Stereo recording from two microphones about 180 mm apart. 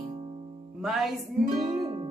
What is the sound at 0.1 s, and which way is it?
Music, 35° right (ahead or behind).